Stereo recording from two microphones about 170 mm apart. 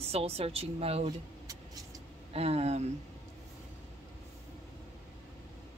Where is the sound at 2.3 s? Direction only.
35° right (ahead or behind).